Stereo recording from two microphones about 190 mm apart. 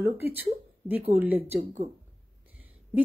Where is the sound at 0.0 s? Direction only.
10° right (ahead or behind).